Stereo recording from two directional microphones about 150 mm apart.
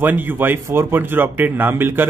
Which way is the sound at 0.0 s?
15° right (ahead or behind).